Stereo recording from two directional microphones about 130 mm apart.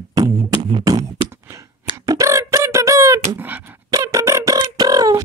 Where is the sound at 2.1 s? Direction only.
25° right (ahead or behind).